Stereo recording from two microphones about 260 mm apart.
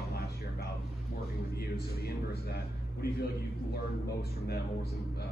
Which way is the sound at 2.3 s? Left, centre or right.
Left.